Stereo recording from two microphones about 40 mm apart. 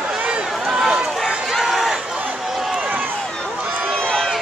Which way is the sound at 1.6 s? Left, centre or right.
Centre.